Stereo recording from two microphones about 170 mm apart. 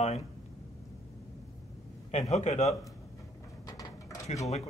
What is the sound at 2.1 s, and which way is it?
Speech, 40° left (ahead or behind).